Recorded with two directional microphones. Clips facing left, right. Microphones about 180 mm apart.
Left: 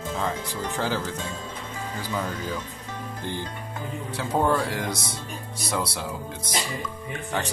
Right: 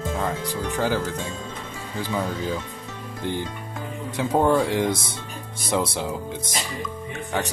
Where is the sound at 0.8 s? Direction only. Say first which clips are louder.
Right 4 dB; 10° right (ahead or behind).